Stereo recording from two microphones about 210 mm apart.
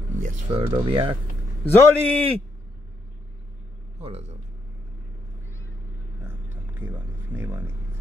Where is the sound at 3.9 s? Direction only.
30° right (ahead or behind).